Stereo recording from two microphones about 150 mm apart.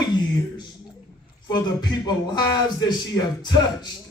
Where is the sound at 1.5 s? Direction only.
30° left (ahead or behind).